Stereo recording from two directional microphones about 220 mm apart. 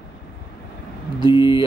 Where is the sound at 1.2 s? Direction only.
20° left (ahead or behind).